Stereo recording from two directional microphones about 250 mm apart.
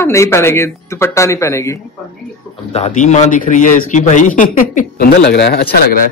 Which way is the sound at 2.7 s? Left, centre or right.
Left.